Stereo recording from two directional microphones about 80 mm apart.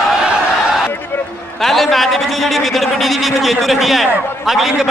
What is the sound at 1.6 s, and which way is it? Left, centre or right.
A man's voice, centre.